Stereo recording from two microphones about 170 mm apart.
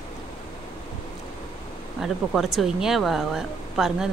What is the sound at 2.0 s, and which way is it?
Speech, centre (ahead or behind).